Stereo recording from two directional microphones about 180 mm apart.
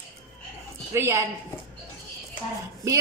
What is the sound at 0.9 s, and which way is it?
Speech, 15° right (ahead or behind).